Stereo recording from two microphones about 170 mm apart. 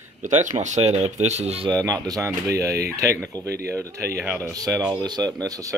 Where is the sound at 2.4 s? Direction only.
65° right (ahead or behind).